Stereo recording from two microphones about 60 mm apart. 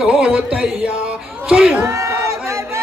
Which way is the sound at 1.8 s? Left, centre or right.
Right.